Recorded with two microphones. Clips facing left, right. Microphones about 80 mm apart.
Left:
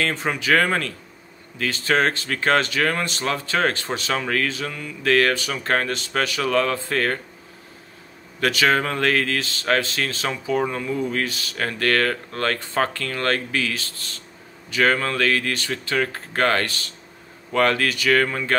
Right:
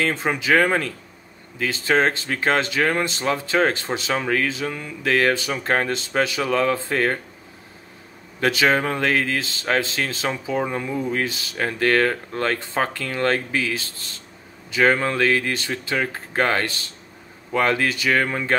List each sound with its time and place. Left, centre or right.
0.0 s speech: right
8.4 s speech: right